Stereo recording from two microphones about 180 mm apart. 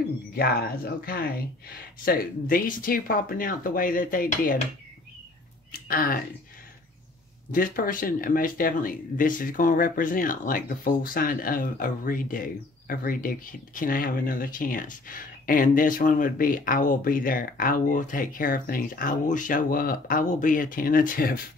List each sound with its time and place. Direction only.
0.3 s speech: 60° left (ahead or behind)
5.7 s speech: 55° left (ahead or behind)
7.5 s speech: 50° left (ahead or behind)